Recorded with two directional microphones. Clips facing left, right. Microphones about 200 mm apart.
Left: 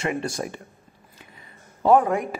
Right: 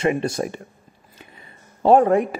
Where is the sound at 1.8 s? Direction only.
30° right (ahead or behind).